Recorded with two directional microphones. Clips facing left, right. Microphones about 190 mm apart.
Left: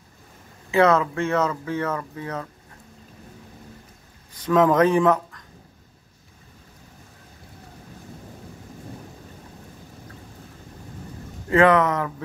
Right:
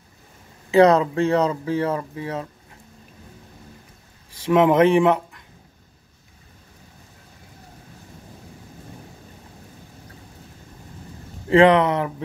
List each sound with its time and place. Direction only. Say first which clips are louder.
0.7 s speech: right 4 dB; 35° right (ahead or behind)
4.5 s speech: right 2 dB; 25° right (ahead or behind)
11.4 s speech: right 3 dB; 30° right (ahead or behind)